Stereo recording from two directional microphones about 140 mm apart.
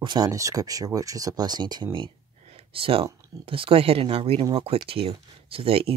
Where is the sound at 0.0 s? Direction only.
30° right (ahead or behind).